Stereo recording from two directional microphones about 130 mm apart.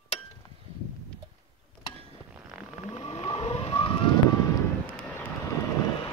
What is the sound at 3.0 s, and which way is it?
Vehicle, 40° left (ahead or behind).